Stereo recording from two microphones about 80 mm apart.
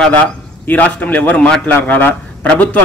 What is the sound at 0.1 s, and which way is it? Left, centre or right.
A man's voice, centre.